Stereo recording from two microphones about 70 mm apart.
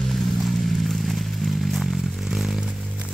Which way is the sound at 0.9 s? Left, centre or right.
Centre.